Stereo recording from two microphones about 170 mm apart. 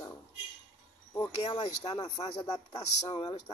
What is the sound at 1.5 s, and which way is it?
Speech, 25° left (ahead or behind).